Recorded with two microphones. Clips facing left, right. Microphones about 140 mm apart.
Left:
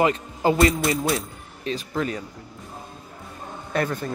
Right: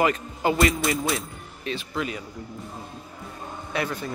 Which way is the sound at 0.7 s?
Centre (ahead or behind).